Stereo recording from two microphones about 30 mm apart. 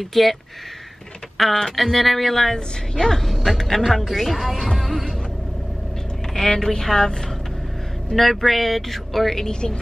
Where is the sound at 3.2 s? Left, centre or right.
Centre.